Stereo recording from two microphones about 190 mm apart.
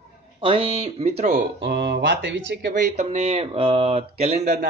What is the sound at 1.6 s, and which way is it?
A man's voice, 60° right (ahead or behind).